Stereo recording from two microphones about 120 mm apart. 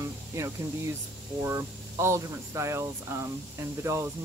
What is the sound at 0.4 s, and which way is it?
Speech, 20° right (ahead or behind).